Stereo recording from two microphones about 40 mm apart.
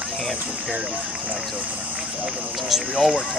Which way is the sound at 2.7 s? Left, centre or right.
Centre.